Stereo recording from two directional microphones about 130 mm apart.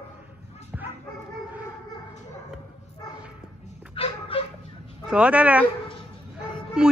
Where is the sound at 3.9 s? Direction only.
45° left (ahead or behind).